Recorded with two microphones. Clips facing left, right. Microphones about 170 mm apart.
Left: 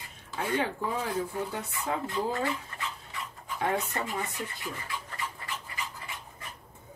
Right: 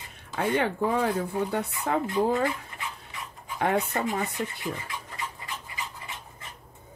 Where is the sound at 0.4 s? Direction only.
65° right (ahead or behind).